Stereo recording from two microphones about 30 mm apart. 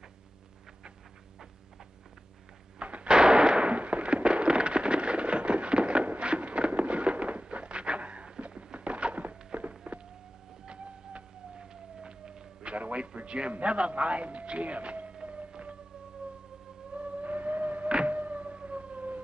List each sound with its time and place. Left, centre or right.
2.8 s artillery fire: right
3.1 s fireworks: right
6.1 s a sound: right
6.7 s fireworks: right
7.5 s a sound: right
10.7 s siren: right
11.6 s siren: right
12.1 s a sound: right
13.7 s a man's voice: right
15.2 s whale vocalization: right
16.9 s a sound: right
18.0 s siren: right